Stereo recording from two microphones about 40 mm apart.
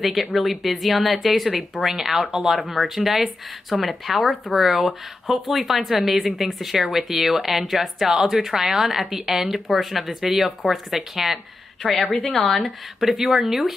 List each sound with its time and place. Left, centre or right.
0.0 s a woman's voice: centre
13.0 s a woman's voice: centre